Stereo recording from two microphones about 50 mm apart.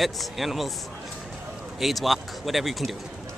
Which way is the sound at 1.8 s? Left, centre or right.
Centre.